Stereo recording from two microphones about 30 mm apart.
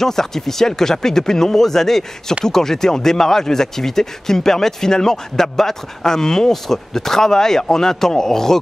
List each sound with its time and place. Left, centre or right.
0.0 s speech: centre